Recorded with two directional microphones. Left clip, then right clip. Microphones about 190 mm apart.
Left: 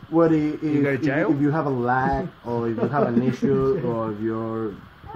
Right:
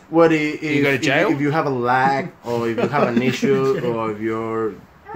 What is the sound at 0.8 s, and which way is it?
Speech, 40° right (ahead or behind).